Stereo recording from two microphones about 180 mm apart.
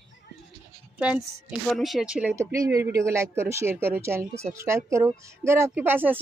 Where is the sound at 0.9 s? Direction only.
5° right (ahead or behind).